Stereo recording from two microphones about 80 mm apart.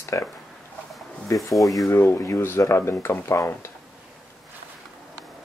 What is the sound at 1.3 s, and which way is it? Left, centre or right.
Speech, left.